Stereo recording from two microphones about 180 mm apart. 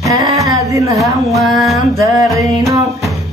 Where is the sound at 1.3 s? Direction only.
Centre (ahead or behind).